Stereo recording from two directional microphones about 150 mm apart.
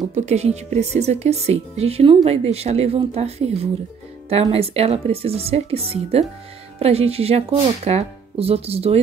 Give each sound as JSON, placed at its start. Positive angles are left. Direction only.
{"t": 0.1, "sound": "speech", "side_deg": -50}